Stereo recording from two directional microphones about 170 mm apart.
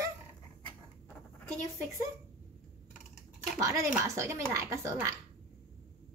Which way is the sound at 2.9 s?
5° right (ahead or behind).